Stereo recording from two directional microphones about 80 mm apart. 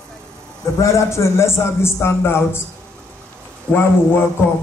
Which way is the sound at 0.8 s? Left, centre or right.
Left.